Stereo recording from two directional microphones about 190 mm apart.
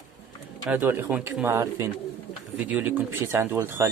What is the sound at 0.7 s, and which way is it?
Speech, 10° right (ahead or behind).